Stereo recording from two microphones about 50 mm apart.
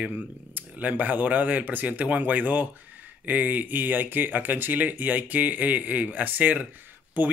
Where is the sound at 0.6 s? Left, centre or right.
Right.